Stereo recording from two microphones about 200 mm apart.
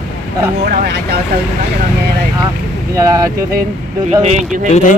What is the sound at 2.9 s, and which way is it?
Speech, 15° right (ahead or behind).